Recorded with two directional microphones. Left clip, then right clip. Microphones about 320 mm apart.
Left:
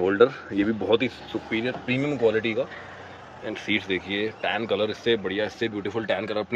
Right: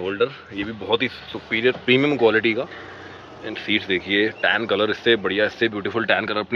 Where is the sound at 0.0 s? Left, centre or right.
Centre.